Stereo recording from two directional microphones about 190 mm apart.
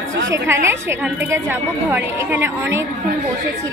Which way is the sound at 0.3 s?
15° right (ahead or behind).